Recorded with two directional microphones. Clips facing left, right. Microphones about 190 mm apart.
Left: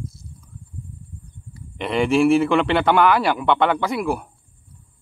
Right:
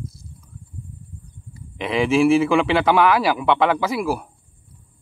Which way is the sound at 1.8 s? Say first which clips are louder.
Even; centre (ahead or behind).